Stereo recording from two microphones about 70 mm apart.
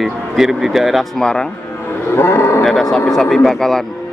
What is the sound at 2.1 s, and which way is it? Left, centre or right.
Cattle, left.